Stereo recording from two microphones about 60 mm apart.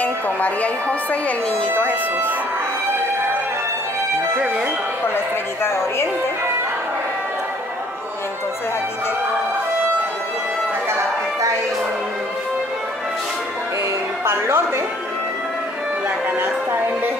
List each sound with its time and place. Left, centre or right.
0.0 s speech: left
5.0 s speech: left
14.2 s a woman's voice: right
16.3 s speech: right